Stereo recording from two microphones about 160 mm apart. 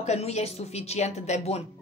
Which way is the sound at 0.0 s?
45° left (ahead or behind).